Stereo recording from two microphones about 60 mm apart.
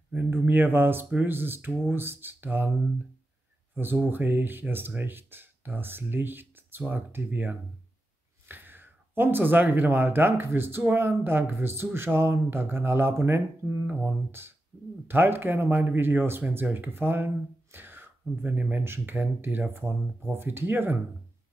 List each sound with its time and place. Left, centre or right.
0.1 s speech: right
3.7 s speech: right